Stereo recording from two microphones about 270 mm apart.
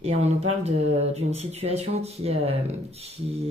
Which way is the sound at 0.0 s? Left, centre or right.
Right.